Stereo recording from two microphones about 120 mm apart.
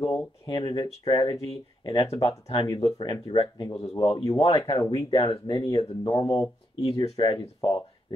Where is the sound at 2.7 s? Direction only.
45° left (ahead or behind).